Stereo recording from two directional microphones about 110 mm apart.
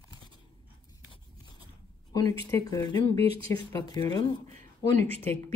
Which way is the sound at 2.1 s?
35° left (ahead or behind).